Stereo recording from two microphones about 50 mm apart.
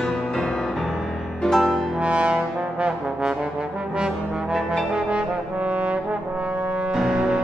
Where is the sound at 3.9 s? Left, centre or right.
Centre.